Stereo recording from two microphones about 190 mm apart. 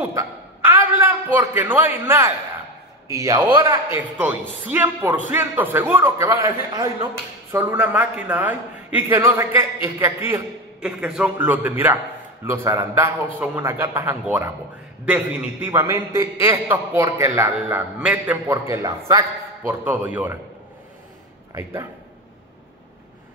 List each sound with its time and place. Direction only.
0.7 s a sound: 10° right (ahead or behind)
1.5 s a man's voice: 10° right (ahead or behind)
7.5 s a man's voice: 5° right (ahead or behind)
10.8 s a man's voice: 5° right (ahead or behind)